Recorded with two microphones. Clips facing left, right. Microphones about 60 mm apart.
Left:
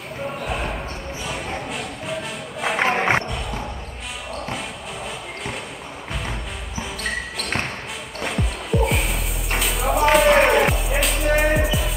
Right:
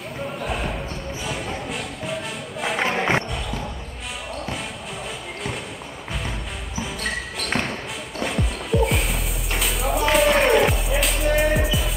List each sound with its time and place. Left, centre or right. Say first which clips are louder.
0.5 s basketball bounce: even; centre
1.7 s music: even; centre
2.8 s music: left 2 dB; left
6.8 s basketball bounce: even; centre
8.2 s music: right 1 dB; centre